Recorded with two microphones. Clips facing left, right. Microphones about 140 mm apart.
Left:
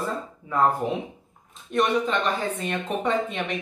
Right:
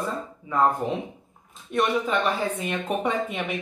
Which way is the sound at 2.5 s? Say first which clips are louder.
Right 1 dB; 10° right (ahead or behind).